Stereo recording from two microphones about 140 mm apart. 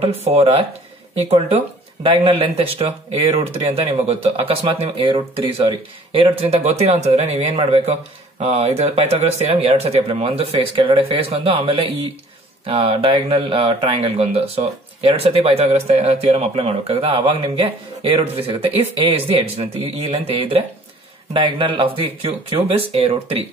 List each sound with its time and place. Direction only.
0.2 s speech: 45° right (ahead or behind)
2.0 s speech: 40° right (ahead or behind)